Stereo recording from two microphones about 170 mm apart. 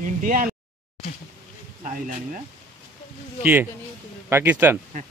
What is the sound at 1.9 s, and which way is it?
Speech, 50° right (ahead or behind).